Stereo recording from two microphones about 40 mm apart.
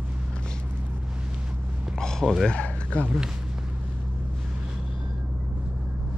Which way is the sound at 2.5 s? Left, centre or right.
Left.